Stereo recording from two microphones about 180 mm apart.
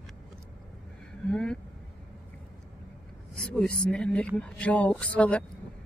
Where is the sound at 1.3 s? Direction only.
5° left (ahead or behind).